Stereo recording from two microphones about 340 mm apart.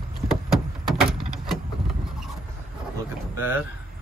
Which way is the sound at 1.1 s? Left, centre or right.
Centre.